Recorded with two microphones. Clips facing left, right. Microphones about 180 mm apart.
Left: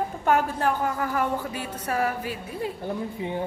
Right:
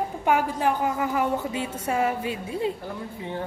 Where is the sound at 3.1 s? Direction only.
15° left (ahead or behind).